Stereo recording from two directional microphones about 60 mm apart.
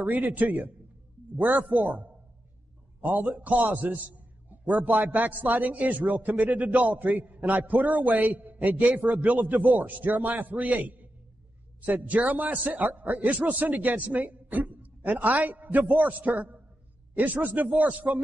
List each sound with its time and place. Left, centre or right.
0.0 s a man's voice: right